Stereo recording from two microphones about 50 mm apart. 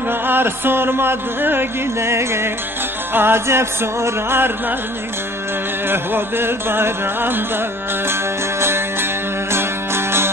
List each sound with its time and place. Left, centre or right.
0.3 s music: right
3.2 s music: right
5.9 s music: right